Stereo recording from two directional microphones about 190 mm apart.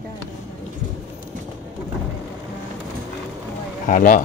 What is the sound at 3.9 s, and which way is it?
Speech, 45° left (ahead or behind).